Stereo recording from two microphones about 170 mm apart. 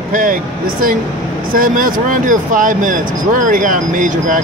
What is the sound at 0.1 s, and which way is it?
Speech, 55° right (ahead or behind).